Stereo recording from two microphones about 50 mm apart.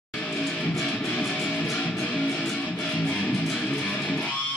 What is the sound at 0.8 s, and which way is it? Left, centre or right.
Music, left.